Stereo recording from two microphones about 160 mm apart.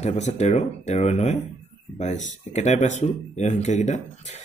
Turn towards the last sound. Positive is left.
turn(degrees=45)  # may be behind; listen again after turning